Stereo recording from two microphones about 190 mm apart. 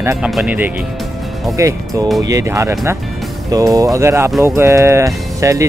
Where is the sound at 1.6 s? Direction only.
15° right (ahead or behind).